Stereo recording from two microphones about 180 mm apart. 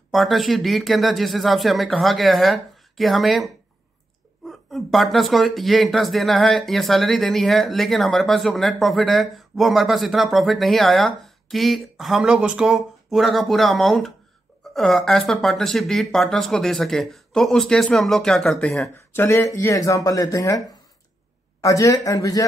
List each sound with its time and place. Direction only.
0.1 s speech: centre (ahead or behind); by 22.4 s 20° left (ahead or behind)